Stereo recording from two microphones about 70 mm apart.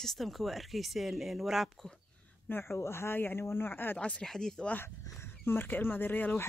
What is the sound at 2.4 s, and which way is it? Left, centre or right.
Speech, left.